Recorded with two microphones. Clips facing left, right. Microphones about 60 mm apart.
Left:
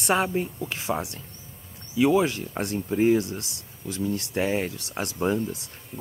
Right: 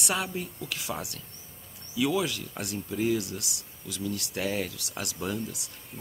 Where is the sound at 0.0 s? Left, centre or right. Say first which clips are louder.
Left 8 dB; left.